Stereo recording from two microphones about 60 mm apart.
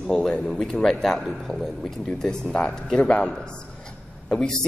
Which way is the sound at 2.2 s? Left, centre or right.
Centre.